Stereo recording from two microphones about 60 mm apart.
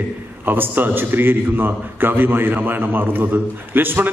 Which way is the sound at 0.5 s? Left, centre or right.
Right.